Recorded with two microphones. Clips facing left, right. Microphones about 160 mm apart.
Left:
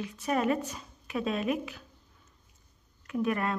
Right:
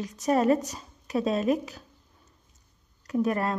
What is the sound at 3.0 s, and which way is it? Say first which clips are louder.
Speech: right 4 dB; 40° right (ahead or behind).